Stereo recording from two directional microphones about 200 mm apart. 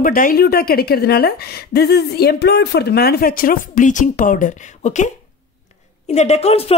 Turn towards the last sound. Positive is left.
turn(degrees=30)  # may be behind; listen again after turning